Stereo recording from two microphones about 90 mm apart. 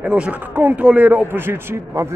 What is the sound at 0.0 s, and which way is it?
A man's voice, 15° right (ahead or behind).